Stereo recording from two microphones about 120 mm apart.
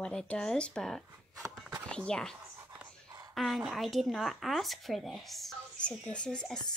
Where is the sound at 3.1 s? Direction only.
35° right (ahead or behind).